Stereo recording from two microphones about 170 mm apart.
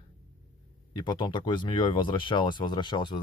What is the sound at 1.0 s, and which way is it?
Speech, 25° left (ahead or behind).